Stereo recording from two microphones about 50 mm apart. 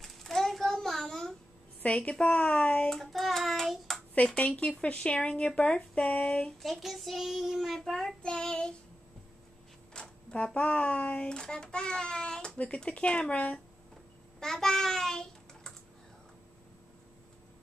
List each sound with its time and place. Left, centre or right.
0.0 s a sound: centre
1.8 s a child's voice: left
2.9 s child singing: centre
4.4 s a child's voice: left
6.6 s child singing: centre
8.2 s child singing: centre
9.9 s a child's voice: left
14.4 s a child's voice: centre